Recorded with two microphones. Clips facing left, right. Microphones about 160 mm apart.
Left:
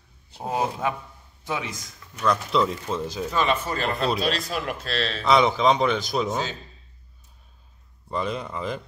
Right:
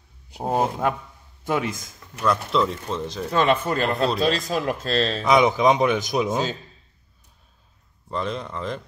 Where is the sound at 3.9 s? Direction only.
Centre (ahead or behind).